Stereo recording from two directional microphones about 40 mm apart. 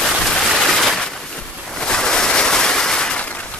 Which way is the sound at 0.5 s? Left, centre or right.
Centre.